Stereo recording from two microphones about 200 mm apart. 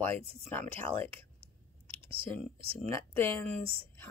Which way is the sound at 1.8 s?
25° right (ahead or behind).